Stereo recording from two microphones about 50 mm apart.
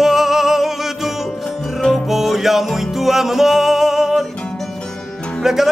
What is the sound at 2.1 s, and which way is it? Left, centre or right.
Music, centre.